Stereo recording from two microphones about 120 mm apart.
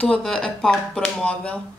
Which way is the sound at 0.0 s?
10° left (ahead or behind).